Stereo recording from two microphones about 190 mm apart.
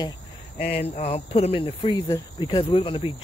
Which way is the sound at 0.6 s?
35° left (ahead or behind).